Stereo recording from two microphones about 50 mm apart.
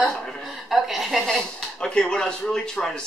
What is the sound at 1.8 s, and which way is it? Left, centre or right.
A man's voice, centre.